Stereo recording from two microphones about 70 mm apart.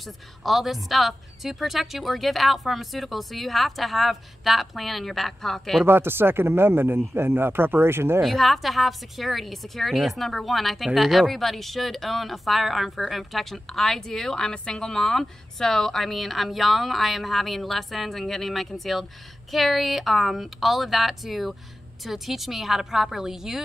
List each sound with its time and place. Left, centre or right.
0.0 s speech: centre
5.9 s speech: right
8.2 s speech: centre